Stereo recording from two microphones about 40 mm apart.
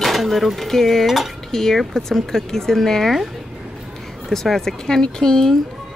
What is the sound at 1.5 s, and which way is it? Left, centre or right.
Speech, centre.